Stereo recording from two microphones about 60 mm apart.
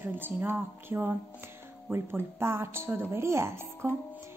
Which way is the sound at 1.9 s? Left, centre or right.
Right.